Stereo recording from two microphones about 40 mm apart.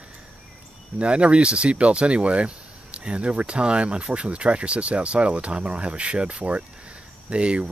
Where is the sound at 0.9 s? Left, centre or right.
Right.